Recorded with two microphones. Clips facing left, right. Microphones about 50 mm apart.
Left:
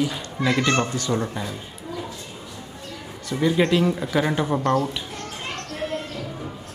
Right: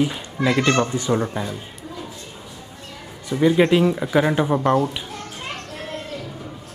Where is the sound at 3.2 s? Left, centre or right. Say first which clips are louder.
Right 4 dB; centre.